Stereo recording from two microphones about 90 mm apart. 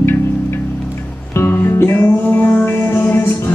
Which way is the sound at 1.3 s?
25° left (ahead or behind).